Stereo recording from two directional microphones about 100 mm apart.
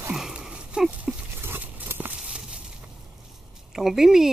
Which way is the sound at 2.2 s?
5° right (ahead or behind).